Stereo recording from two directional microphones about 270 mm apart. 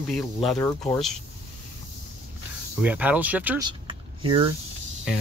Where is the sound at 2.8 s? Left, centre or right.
Centre.